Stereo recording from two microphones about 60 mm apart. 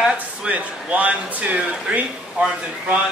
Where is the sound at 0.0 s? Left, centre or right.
Centre.